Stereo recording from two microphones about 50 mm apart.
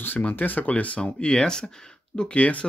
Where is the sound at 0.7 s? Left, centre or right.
Left.